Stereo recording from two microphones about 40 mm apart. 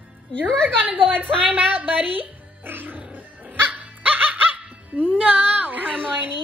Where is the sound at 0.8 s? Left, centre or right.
Right.